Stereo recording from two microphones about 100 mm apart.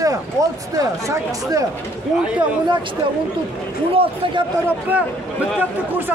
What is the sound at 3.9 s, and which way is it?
Speech, 65° right (ahead or behind).